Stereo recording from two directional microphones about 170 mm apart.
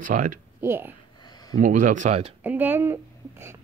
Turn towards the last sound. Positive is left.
turn(degrees=-15)  # may be behind; listen again after turning